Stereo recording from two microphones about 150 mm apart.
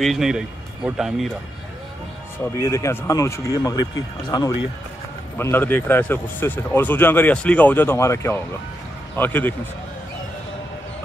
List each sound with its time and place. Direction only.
0.0 s speech: centre (ahead or behind)
2.4 s speech: 20° left (ahead or behind)
5.4 s speech: 15° left (ahead or behind)